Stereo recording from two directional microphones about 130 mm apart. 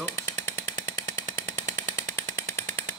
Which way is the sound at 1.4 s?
20° left (ahead or behind).